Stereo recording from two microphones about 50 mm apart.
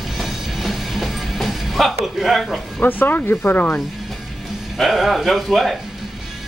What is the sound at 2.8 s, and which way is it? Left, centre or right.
Speech, left.